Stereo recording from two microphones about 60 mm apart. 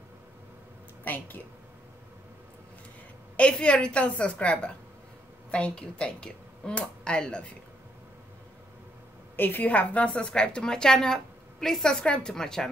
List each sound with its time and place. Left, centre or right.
1.0 s speech: left
3.3 s a woman's voice: centre
9.4 s a woman's voice: left; by 12.6 s centre